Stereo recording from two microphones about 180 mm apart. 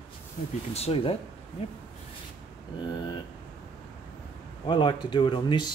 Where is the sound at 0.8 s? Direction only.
35° left (ahead or behind).